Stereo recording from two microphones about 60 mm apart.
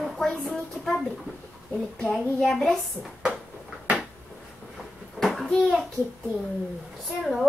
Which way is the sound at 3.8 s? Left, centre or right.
Centre.